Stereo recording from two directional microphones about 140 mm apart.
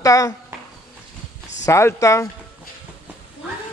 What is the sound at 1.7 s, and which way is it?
Speech, 20° left (ahead or behind).